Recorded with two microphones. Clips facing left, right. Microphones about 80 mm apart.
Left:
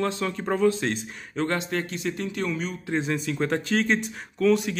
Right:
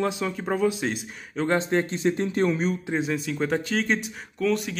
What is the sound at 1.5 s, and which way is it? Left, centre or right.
Speech, right.